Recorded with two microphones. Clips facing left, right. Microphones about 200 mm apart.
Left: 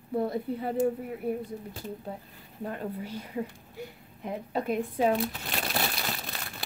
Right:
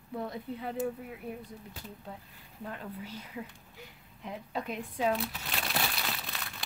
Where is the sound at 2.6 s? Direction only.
40° left (ahead or behind).